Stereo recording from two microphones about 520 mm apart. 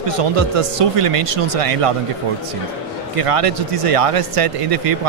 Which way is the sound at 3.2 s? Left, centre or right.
Right.